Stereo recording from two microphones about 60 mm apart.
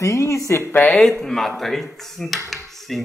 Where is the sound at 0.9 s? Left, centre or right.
Centre.